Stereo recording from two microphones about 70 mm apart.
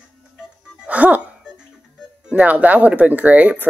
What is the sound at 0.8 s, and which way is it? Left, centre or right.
Music, right.